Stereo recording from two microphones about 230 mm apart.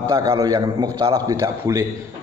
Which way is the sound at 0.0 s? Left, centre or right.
Centre.